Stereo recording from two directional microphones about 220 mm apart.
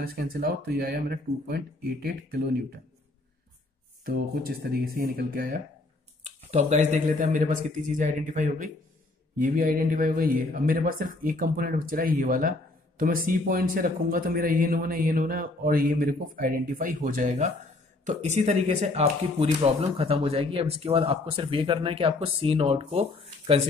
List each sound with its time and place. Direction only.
0.0 s speech: 40° right (ahead or behind)
4.0 s speech: 45° right (ahead or behind)
6.2 s speech: 30° right (ahead or behind)